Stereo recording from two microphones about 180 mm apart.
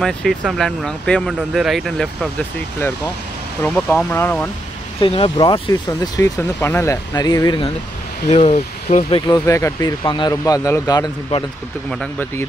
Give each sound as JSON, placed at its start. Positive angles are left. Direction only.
{"t": 0.0, "sound": "speech", "side_deg": 0}
{"t": 3.6, "sound": "speech", "side_deg": 10}
{"t": 5.0, "sound": "speech", "side_deg": 30}
{"t": 8.3, "sound": "speech", "side_deg": 35}
{"t": 9.3, "sound": "speech", "side_deg": 15}
{"t": 11.9, "sound": "speech", "side_deg": 5}